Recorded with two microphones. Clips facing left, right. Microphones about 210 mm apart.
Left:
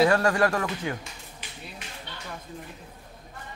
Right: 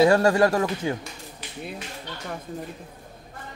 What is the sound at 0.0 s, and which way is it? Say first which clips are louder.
Speech: right 4 dB; 25° right (ahead or behind).